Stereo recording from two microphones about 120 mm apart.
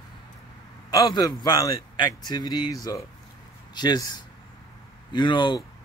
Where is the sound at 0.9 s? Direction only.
30° left (ahead or behind).